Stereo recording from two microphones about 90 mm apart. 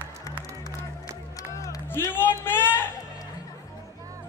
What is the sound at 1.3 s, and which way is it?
Music, 40° left (ahead or behind).